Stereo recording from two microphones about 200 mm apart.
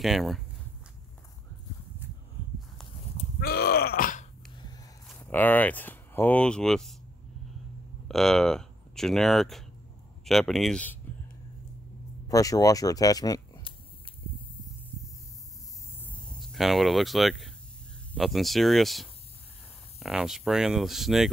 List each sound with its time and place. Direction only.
0.0 s speech: centre (ahead or behind)
3.3 s groan: 50° left (ahead or behind)
5.0 s speech: 10° left (ahead or behind)
8.1 s speech: centre (ahead or behind)
12.3 s speech: 15° left (ahead or behind)
16.0 s a sound: centre (ahead or behind)
18.1 s speech: centre (ahead or behind)